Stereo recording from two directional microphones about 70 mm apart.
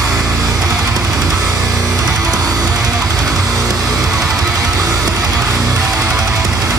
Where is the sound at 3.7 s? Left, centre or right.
Right.